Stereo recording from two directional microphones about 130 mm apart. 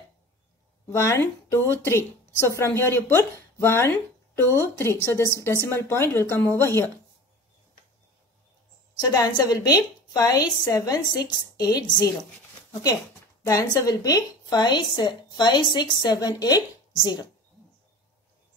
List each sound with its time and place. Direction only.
0.8 s a woman's voice: 20° left (ahead or behind)
9.0 s a woman's voice: 30° left (ahead or behind)
13.5 s a woman's voice: 25° left (ahead or behind)